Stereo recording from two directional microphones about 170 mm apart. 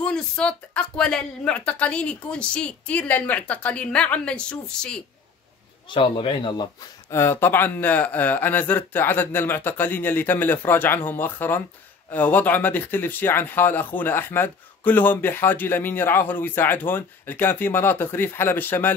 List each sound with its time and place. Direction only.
0.0 s speech: 5° left (ahead or behind)
5.9 s a man's voice: 30° left (ahead or behind)
7.1 s speech: 15° left (ahead or behind)